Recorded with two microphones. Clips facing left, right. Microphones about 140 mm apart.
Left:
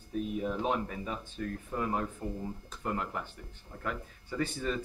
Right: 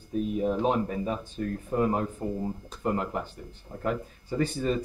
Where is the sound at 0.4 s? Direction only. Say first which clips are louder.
Right 7 dB; 30° right (ahead or behind).